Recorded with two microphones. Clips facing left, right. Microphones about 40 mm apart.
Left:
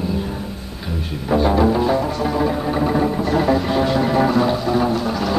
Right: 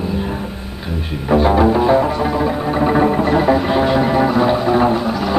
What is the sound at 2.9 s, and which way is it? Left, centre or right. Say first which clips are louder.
Music: right 5 dB; right.